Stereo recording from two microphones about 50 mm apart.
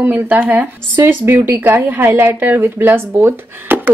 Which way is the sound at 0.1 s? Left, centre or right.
Right.